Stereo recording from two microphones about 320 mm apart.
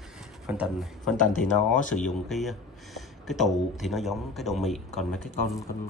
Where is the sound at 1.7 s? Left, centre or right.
Left.